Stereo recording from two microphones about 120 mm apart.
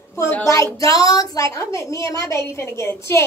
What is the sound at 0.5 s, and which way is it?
A woman's voice, 25° left (ahead or behind).